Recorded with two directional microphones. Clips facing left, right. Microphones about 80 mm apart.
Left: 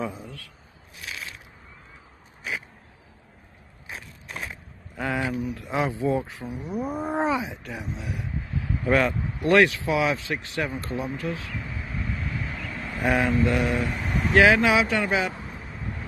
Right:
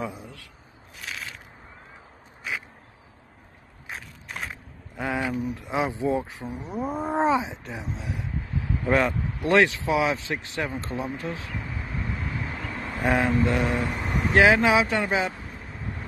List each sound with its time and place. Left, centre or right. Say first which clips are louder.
0.0 s a sound: left 2 dB; centre
4.9 s speech: even; centre
12.0 s vehicle: even; centre
13.3 s speech: even; right